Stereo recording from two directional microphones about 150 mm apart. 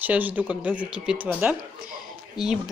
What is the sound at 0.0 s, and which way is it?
Speech, 10° right (ahead or behind).